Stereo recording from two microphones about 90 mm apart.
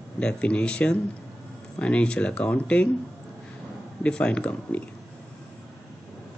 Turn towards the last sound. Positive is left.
turn(degrees=15)  # may be behind; listen again after turning